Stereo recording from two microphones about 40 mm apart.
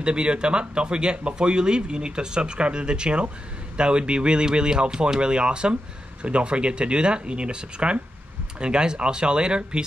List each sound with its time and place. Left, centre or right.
0.0 s speech: right